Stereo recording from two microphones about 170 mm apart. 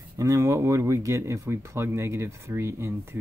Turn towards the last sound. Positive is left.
turn(degrees=-15)  # may be behind; listen again after turning